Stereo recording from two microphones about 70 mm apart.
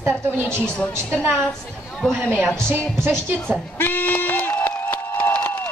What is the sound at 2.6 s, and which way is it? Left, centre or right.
Speech, right.